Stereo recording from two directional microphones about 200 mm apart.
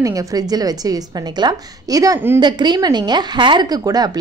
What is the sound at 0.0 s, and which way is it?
A woman's voice, 15° right (ahead or behind).